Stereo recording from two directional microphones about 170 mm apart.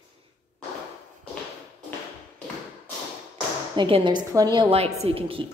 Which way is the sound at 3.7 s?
30° right (ahead or behind).